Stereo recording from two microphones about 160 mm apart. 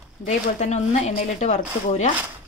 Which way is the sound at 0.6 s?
45° left (ahead or behind).